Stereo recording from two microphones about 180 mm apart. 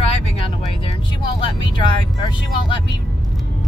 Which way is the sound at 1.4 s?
25° left (ahead or behind).